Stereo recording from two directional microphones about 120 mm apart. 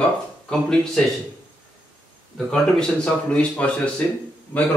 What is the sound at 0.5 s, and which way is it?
Speech, 5° left (ahead or behind).